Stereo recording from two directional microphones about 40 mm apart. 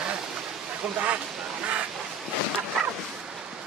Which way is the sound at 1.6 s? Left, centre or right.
Right.